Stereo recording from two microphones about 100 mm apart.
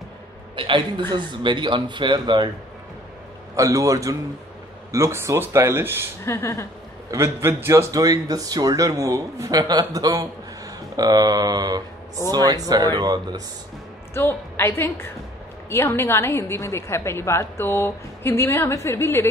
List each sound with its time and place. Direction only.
0.6 s a woman's voice: 55° right (ahead or behind)
3.5 s a man's voice: 35° right (ahead or behind)
6.2 s a woman's voice: 30° left (ahead or behind)
7.1 s a man's voice: 30° right (ahead or behind)
14.1 s a woman's voice: 25° left (ahead or behind)